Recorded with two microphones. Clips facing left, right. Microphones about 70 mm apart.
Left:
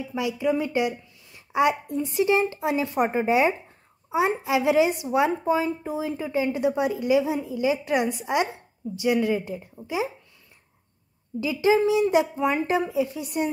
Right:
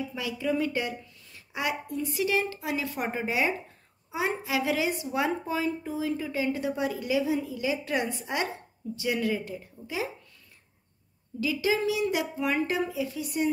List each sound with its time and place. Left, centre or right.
0.1 s a woman's voice: centre
4.3 s a woman's voice: centre
11.3 s a woman's voice: left